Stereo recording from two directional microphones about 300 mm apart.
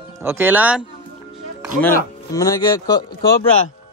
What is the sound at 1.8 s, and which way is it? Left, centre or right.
Speech, centre.